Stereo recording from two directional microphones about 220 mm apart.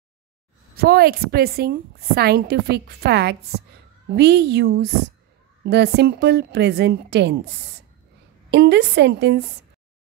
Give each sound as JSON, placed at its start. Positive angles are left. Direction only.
{"t": 0.7, "sound": "a woman's voice", "side_deg": -45}